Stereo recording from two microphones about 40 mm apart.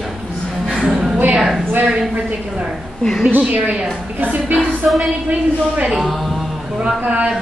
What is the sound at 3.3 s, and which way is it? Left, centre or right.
A woman's voice, right.